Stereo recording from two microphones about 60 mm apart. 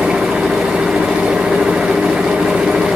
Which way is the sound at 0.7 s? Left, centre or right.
Centre.